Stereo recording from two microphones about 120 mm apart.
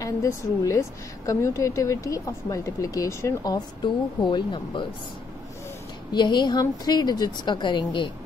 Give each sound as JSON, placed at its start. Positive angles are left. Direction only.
{"t": 0.0, "sound": "a woman's voice", "side_deg": 25}
{"t": 6.1, "sound": "a woman's voice", "side_deg": 40}